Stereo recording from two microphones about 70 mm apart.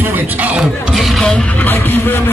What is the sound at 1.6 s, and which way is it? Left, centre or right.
Vehicle, left.